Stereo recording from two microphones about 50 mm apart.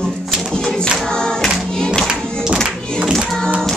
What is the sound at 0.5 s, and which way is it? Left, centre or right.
Choir, centre.